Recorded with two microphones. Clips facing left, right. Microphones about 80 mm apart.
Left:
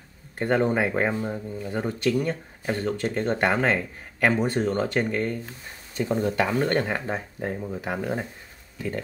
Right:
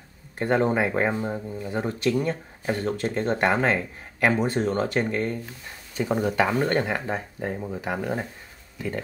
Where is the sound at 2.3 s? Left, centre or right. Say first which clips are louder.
Right 1 dB; centre.